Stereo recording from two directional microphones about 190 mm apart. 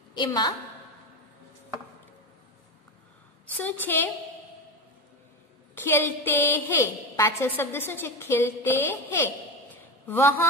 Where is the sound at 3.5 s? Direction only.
10° left (ahead or behind).